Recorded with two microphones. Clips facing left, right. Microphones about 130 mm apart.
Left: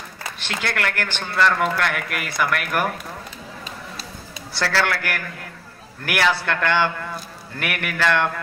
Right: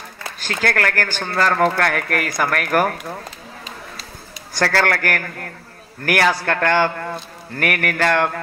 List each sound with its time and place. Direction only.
0.4 s speech: 40° right (ahead or behind)
4.6 s speech: 50° right (ahead or behind)